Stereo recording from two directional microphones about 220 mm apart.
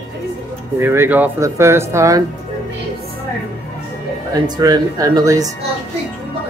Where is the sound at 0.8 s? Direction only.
10° right (ahead or behind).